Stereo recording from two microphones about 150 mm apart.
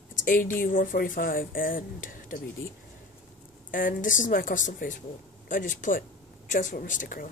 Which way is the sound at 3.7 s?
65° left (ahead or behind).